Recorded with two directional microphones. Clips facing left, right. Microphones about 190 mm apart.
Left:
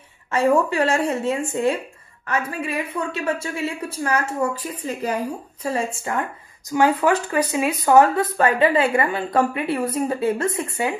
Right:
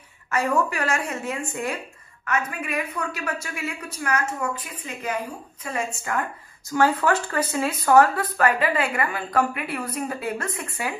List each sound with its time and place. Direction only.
0.3 s a woman's voice: 25° left (ahead or behind)
6.7 s speech: 15° left (ahead or behind)